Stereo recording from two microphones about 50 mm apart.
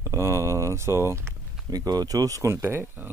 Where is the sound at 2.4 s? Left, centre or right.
Right.